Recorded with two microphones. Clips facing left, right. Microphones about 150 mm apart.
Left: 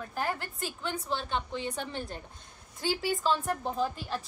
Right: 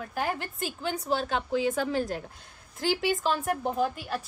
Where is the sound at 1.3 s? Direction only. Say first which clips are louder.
Right 6 dB; 90° right.